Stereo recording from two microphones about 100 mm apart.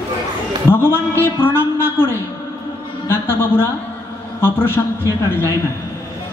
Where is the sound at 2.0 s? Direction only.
20° left (ahead or behind).